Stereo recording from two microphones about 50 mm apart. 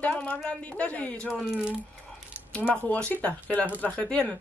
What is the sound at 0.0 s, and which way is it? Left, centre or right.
Speech, left.